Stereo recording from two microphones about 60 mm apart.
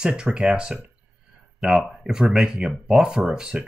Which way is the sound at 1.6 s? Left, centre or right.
Centre.